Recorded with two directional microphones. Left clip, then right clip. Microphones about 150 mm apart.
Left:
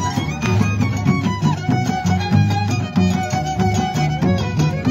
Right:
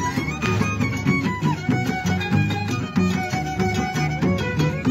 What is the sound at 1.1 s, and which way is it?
Music, 50° left (ahead or behind).